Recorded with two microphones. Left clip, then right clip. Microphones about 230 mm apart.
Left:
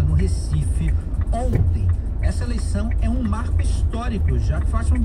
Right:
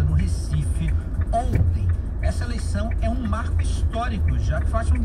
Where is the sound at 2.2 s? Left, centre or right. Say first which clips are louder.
Even; left.